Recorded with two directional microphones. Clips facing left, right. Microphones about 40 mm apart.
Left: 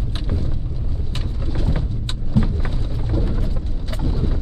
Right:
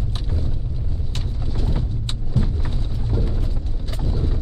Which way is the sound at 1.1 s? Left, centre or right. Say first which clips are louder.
Left 3 dB; centre.